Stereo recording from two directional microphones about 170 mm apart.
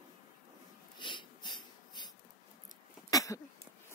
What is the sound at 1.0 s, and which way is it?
Wheeze, 25° left (ahead or behind).